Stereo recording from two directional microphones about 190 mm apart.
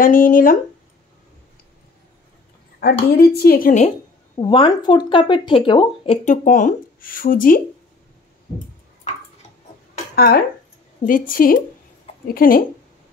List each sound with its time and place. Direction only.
0.0 s speech: 45° left (ahead or behind)
2.8 s speech: 55° left (ahead or behind)
4.4 s speech: 25° left (ahead or behind)
6.2 s speech: 40° left (ahead or behind)
10.1 s speech: 55° left (ahead or behind)